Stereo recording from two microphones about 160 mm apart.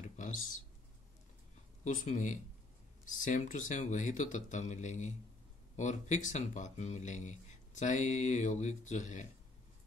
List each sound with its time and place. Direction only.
0.0 s a sound: 55° left (ahead or behind)
1.9 s speech: 50° left (ahead or behind)
3.3 s speech: 50° left (ahead or behind)